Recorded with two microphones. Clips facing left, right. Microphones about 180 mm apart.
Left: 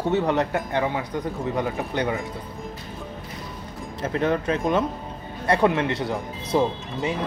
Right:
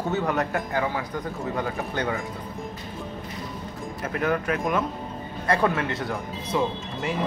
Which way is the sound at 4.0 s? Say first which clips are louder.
Left 3 dB; 25° left (ahead or behind).